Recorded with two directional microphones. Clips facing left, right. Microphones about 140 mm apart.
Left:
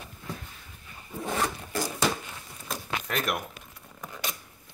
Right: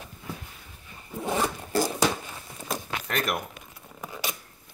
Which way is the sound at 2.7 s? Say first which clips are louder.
Right 1 dB; centre (ahead or behind).